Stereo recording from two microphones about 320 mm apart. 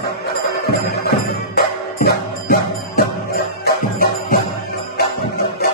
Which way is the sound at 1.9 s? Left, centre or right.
Left.